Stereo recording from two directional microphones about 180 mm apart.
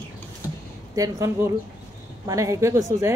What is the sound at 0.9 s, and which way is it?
Speech, 15° right (ahead or behind).